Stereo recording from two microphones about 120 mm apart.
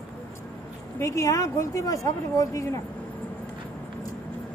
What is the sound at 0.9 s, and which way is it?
Speech, 25° left (ahead or behind).